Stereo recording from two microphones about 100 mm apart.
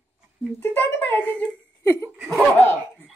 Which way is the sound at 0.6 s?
20° left (ahead or behind).